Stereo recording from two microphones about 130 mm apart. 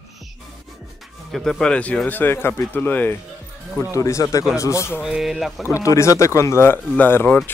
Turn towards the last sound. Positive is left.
turn(degrees=15)  # may be behind; listen again after turning